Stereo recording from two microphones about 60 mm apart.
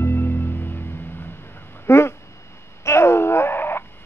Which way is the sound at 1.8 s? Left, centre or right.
Left.